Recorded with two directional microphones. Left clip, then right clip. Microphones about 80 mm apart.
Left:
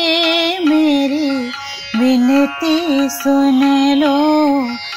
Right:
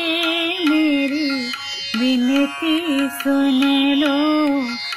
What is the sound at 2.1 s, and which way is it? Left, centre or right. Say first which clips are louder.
Music: left 6 dB; right.